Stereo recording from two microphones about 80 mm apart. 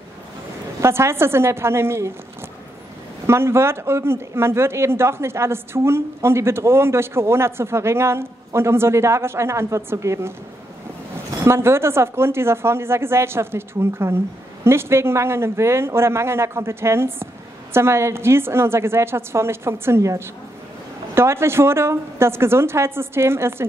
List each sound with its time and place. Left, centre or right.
0.7 s a man's voice: right
3.3 s a man's voice: right
11.4 s a man's voice: right